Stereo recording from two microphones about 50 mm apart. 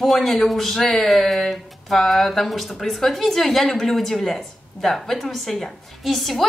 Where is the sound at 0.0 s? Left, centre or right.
Centre.